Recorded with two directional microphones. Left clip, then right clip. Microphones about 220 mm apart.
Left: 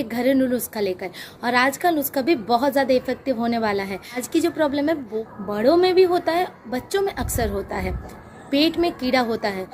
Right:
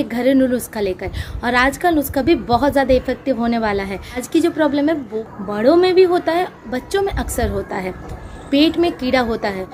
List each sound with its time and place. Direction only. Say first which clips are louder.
0.0 s a woman's voice: right 5 dB; 5° left (ahead or behind)